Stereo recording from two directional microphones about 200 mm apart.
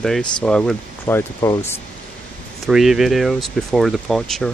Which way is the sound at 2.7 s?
Centre (ahead or behind).